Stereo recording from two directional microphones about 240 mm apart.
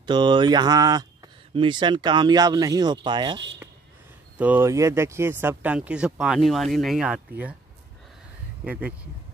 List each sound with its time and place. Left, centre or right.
0.0 s speech: centre
4.4 s speech: centre
8.6 s speech: centre